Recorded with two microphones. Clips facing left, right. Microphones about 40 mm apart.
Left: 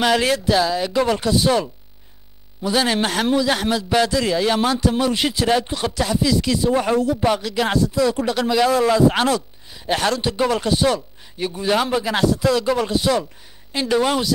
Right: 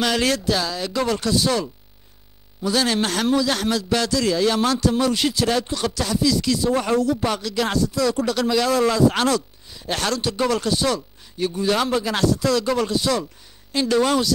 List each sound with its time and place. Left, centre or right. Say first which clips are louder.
0.0 s a man's voice: left 3 dB; centre